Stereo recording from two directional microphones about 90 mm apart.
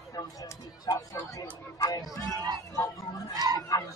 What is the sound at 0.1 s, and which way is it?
Speech, 40° left (ahead or behind).